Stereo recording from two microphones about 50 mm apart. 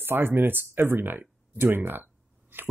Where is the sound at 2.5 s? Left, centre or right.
Right.